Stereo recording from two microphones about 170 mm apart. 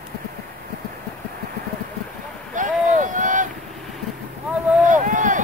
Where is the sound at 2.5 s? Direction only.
50° right (ahead or behind).